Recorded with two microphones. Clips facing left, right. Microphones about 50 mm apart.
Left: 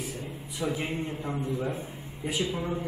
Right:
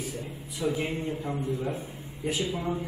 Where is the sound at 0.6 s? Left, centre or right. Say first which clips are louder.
Right 1 dB; centre.